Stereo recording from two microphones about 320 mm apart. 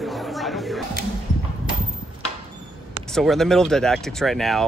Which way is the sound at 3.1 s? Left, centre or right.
Centre.